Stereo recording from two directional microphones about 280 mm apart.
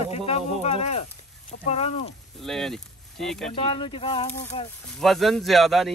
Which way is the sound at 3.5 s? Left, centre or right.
Centre.